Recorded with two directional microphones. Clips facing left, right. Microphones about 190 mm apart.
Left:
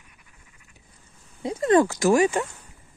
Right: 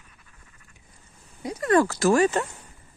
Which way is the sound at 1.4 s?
25° left (ahead or behind).